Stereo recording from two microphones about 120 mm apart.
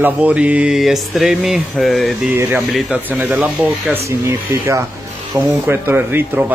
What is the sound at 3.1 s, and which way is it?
Speech, 15° right (ahead or behind).